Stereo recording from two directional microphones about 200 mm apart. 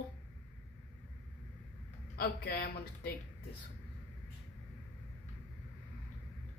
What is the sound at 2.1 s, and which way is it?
Speech, 50° left (ahead or behind).